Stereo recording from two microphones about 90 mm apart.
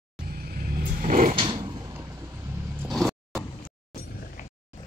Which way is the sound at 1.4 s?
65° right (ahead or behind).